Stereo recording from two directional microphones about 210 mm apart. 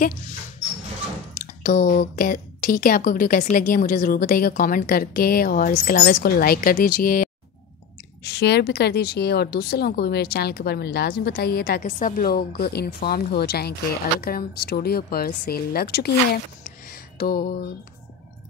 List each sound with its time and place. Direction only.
1.4 s speech: 40° left (ahead or behind)
8.2 s speech: 50° left (ahead or behind)
16.6 s a sound: 45° left (ahead or behind)